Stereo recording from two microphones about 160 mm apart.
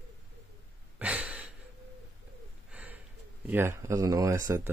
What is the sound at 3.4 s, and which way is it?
Speech, 15° right (ahead or behind).